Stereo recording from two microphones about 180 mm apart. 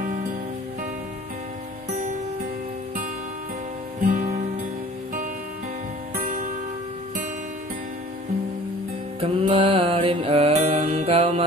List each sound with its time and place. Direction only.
4.0 s music: 45° right (ahead or behind)
6.1 s music: 45° right (ahead or behind)
9.2 s music: 30° right (ahead or behind)